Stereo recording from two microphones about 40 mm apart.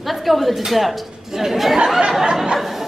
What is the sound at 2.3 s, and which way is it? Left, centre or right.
Chatter, centre.